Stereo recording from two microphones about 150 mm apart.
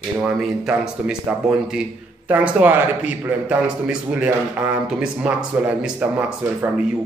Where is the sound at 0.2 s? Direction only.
5° right (ahead or behind).